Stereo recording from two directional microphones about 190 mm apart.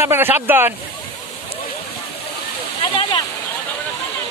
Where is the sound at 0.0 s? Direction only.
10° right (ahead or behind).